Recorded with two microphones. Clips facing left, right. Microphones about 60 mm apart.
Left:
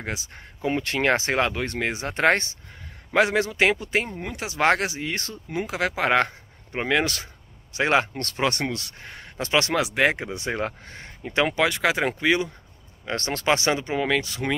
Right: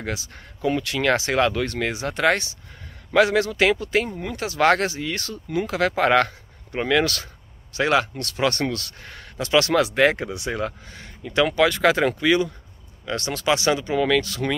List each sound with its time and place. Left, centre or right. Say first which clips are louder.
0.0 s speech: right 2 dB; left
3.1 s speech: right 3 dB; left
10.3 s speech: right 1 dB; left
13.0 s speech: right 1 dB; left
13.7 s speech: right 3 dB; left